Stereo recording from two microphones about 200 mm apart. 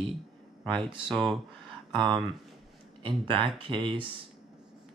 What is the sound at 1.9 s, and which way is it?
Speech, 25° right (ahead or behind).